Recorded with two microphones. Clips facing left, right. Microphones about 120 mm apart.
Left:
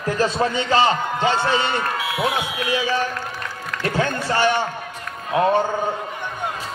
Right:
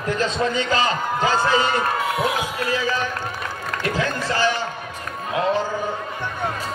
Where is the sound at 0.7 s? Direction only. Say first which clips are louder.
Left 8 dB; 30° left (ahead or behind).